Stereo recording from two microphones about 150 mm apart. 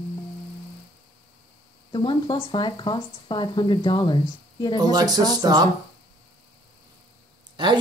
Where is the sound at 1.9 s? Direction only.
30° left (ahead or behind).